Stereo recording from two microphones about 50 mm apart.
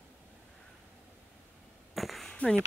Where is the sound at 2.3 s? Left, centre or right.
Left.